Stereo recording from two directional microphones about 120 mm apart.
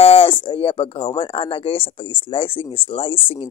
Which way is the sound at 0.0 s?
50° left (ahead or behind).